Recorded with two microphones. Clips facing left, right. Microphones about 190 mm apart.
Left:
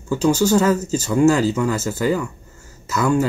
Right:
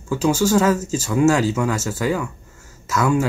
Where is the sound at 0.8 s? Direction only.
90° right.